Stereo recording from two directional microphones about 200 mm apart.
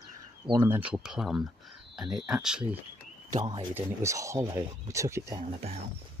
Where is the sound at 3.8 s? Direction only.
15° right (ahead or behind).